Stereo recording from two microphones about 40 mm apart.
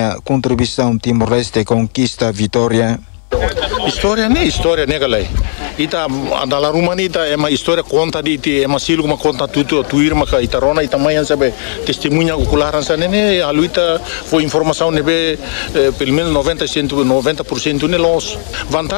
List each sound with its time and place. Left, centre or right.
0.0 s a man's voice: centre